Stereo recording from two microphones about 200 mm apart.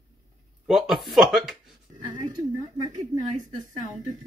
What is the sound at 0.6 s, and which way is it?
Speech, centre (ahead or behind).